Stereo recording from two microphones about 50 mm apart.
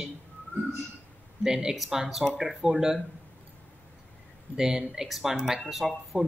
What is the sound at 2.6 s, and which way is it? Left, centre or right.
Speech, centre.